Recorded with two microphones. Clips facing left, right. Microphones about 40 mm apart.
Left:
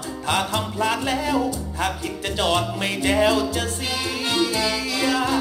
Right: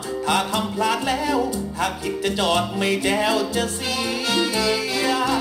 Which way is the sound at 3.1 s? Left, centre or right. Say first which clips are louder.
Left 2 dB; left.